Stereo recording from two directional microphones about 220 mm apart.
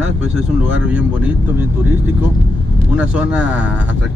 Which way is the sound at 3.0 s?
5° right (ahead or behind).